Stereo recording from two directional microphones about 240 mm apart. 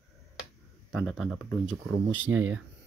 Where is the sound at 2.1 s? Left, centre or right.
Right.